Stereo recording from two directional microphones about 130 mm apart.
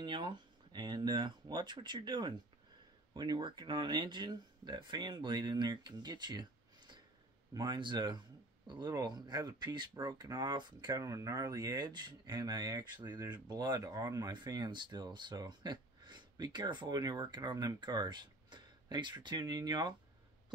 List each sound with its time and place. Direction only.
0.0 s speech: 35° right (ahead or behind)